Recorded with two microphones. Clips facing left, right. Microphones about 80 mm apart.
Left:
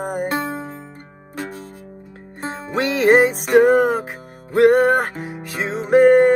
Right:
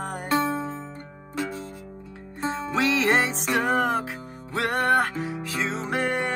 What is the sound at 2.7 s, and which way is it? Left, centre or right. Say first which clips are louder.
Music: left 8 dB; centre.